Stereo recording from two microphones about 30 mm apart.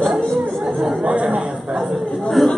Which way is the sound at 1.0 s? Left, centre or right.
Right.